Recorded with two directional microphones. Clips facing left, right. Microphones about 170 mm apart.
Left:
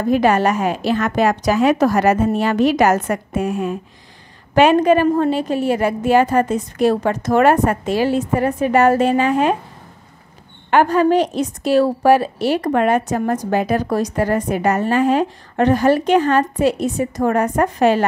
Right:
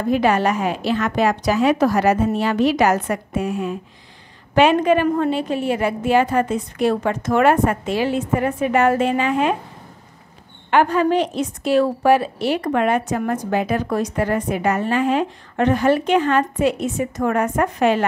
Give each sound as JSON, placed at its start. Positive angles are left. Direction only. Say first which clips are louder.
{"t": 0.1, "sound": "a woman's voice", "louder": "left 2 dB", "side_deg": 45}
{"t": 10.7, "sound": "a woman's voice", "louder": "left 3 dB", "side_deg": 40}